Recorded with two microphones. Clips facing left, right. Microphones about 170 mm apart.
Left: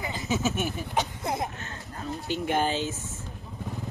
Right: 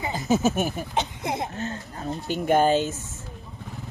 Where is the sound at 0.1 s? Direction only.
45° right (ahead or behind).